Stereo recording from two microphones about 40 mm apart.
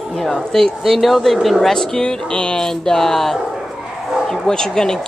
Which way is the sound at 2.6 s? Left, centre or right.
Centre.